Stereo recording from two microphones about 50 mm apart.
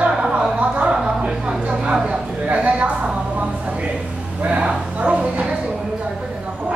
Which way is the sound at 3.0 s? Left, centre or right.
Right.